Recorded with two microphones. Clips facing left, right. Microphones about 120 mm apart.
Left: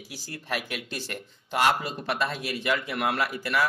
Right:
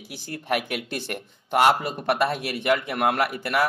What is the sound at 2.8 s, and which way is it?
Speech, 45° right (ahead or behind).